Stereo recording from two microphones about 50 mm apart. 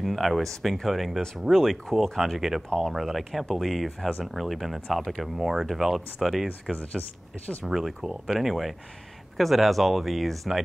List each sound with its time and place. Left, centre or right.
0.0 s speech: centre
6.8 s speech: left
7.6 s speech: centre